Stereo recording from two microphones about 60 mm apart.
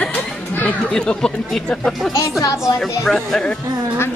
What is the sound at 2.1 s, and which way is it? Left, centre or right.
Speech, left.